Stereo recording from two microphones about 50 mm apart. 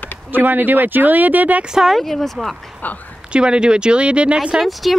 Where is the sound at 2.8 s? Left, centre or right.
Left.